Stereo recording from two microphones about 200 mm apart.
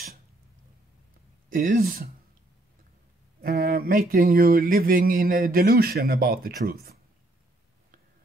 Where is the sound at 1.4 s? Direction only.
45° right (ahead or behind).